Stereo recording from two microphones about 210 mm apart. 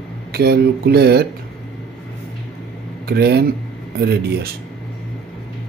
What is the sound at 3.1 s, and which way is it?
Speech, 50° right (ahead or behind).